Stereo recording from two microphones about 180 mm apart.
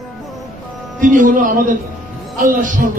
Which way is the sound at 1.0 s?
45° right (ahead or behind).